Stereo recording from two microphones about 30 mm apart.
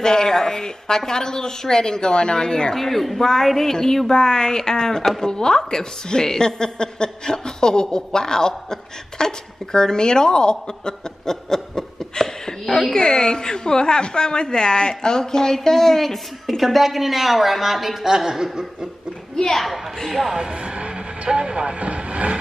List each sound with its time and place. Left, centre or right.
0.0 s a woman's voice: left
2.7 s a woman's voice: centre
12.9 s a woman's voice: left
16.4 s a woman's voice: centre
18.3 s chuckle: centre
19.3 s a woman's voice: left
20.3 s speech: right
21.7 s speech: right